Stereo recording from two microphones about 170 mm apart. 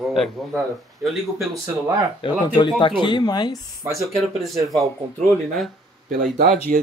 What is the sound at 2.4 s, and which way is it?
Speech, 25° left (ahead or behind).